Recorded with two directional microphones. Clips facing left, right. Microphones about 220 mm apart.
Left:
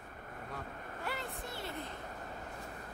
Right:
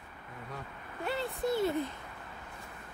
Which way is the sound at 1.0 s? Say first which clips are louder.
Right 7 dB; 30° right (ahead or behind).